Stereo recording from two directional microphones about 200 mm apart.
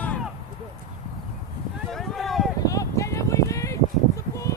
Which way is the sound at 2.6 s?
15° left (ahead or behind).